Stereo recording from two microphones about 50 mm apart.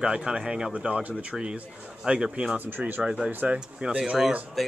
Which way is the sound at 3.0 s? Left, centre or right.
Centre.